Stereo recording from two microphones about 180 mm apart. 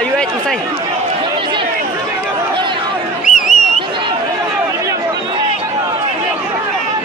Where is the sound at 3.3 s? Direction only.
45° left (ahead or behind).